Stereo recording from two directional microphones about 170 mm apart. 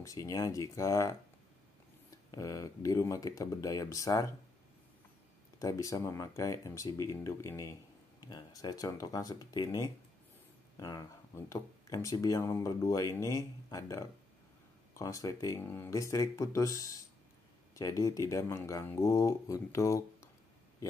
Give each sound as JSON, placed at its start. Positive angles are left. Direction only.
{"t": 0.0, "sound": "speech", "side_deg": 20}
{"t": 2.3, "sound": "speech", "side_deg": 20}
{"t": 5.6, "sound": "speech", "side_deg": 20}